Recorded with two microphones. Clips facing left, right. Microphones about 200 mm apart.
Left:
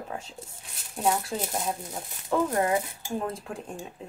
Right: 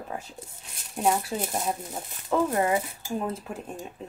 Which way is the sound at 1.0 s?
5° right (ahead or behind).